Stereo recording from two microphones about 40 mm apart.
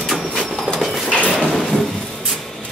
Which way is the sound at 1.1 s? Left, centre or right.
Left.